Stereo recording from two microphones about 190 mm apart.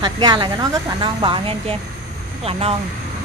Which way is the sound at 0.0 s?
20° right (ahead or behind).